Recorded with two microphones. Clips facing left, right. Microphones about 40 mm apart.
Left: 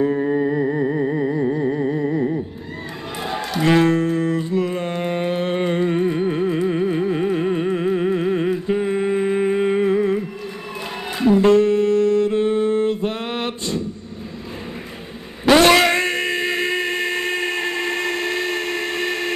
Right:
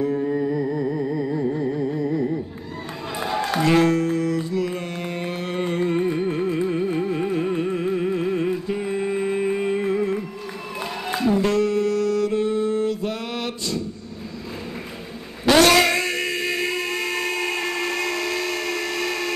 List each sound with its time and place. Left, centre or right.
0.0 s music: left
3.6 s music: left
5.9 s music: centre
11.1 s music: left
15.6 s a sound: left